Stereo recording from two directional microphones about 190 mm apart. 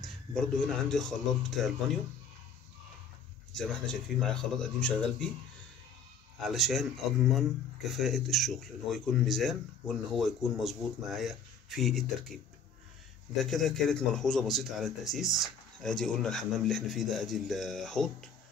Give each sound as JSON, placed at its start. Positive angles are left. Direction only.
{"t": 0.0, "sound": "speech", "side_deg": 5}
{"t": 3.5, "sound": "speech", "side_deg": 5}
{"t": 6.4, "sound": "speech", "side_deg": 0}
{"t": 13.4, "sound": "speech", "side_deg": 0}
{"t": 15.2, "sound": "speech", "side_deg": 20}
{"t": 16.0, "sound": "speech", "side_deg": 5}